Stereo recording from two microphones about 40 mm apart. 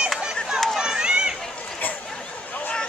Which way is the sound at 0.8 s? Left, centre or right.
Centre.